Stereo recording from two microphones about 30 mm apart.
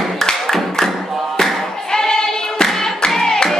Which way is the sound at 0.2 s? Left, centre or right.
Centre.